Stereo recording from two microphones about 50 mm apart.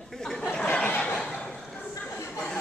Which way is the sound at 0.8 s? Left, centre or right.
Left.